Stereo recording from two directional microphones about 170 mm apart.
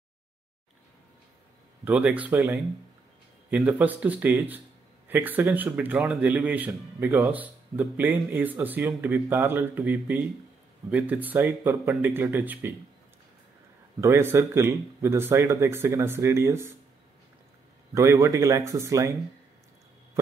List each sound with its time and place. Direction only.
1.9 s speech: 5° right (ahead or behind)
14.0 s speech: 15° right (ahead or behind)
17.9 s speech: 20° right (ahead or behind)